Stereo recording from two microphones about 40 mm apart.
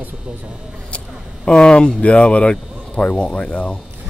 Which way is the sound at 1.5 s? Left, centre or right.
Left.